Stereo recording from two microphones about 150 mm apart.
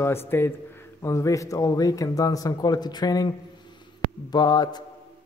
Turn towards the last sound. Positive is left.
turn(degrees=25)  # may be behind; listen again after turning